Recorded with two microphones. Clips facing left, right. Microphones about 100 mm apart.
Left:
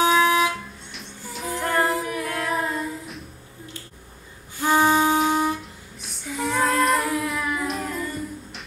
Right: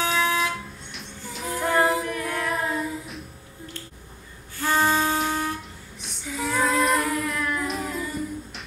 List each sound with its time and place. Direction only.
0.0 s a sound: 15° left (ahead or behind)
0.9 s female singing: centre (ahead or behind)
4.6 s music: 15° left (ahead or behind)
5.9 s female singing: centre (ahead or behind)